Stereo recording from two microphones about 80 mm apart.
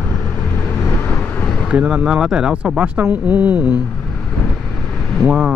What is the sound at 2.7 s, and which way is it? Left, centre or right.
Speech, right.